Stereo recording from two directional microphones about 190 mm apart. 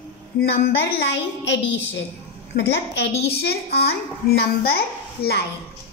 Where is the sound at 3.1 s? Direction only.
30° left (ahead or behind).